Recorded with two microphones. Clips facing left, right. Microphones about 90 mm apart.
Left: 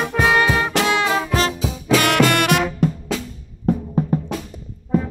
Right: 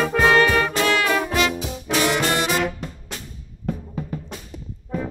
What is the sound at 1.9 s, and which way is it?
Music, 75° left (ahead or behind).